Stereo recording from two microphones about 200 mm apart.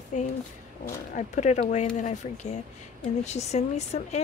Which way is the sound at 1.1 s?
35° left (ahead or behind).